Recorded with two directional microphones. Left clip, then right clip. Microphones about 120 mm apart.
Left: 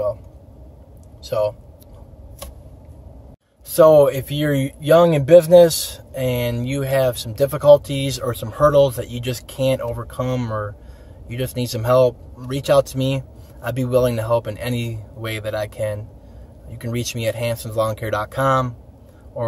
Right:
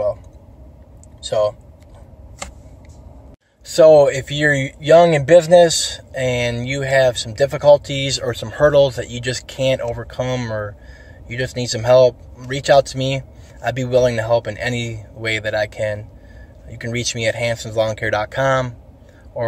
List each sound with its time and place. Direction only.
1.2 s speech: 30° left (ahead or behind)
3.7 s speech: 10° left (ahead or behind)